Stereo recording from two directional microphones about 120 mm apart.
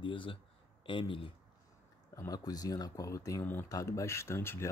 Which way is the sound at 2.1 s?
30° left (ahead or behind).